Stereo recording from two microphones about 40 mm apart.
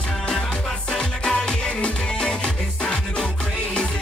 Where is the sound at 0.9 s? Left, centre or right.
Left.